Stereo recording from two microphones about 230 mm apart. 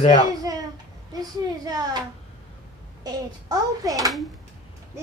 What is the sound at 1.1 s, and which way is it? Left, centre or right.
Speech, centre.